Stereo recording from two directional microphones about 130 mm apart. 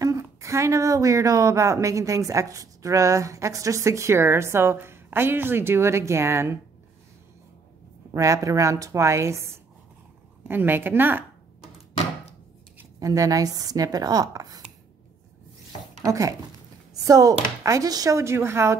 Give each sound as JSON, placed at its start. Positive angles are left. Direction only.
{"t": 0.0, "sound": "speech", "side_deg": -25}
{"t": 8.1, "sound": "a woman's voice", "side_deg": -25}
{"t": 13.0, "sound": "speech", "side_deg": -25}
{"t": 16.1, "sound": "speech", "side_deg": -25}